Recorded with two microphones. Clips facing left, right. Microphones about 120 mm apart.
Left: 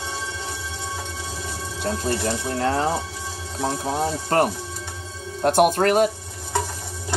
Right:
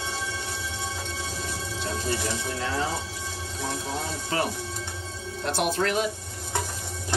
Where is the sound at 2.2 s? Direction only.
50° left (ahead or behind).